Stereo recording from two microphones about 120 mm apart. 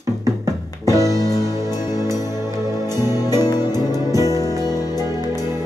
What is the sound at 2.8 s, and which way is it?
Music, 25° right (ahead or behind).